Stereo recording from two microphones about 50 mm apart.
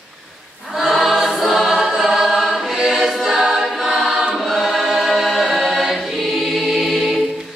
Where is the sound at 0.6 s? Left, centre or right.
Centre.